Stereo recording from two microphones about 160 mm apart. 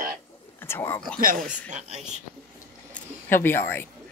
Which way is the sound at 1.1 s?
60° right (ahead or behind).